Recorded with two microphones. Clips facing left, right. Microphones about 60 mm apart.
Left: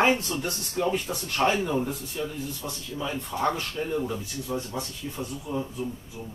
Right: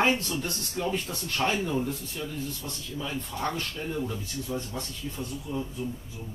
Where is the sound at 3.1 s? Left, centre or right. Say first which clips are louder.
Left 5 dB; left.